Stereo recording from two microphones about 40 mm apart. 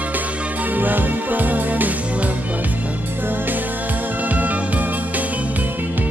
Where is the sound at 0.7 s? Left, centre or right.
Right.